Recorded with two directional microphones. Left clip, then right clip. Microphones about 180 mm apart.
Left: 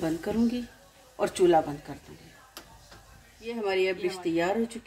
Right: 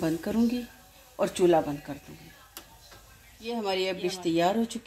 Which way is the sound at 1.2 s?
35° right (ahead or behind).